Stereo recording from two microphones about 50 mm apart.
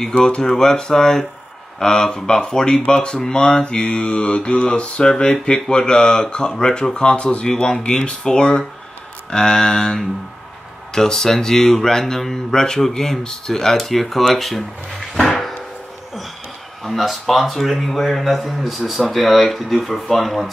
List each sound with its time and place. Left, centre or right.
0.1 s speech: centre
2.8 s mantra: centre
5.0 s speech: centre
11.0 s speech: centre
15.1 s a sound: centre
16.8 s a man's voice: centre